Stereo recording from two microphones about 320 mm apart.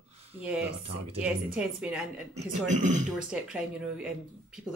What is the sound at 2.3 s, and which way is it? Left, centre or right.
Speech, right.